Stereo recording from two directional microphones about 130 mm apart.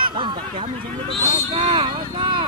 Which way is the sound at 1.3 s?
40° right (ahead or behind).